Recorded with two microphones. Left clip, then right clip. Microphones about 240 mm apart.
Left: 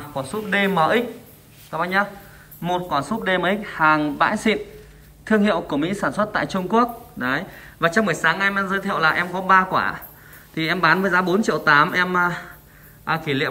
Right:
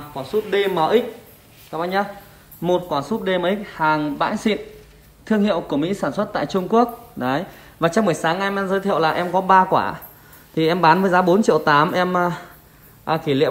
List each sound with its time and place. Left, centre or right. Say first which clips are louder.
0.5 s a woman's voice: even; centre